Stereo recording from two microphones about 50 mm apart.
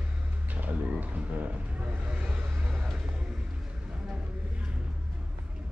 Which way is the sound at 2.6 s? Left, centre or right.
Centre.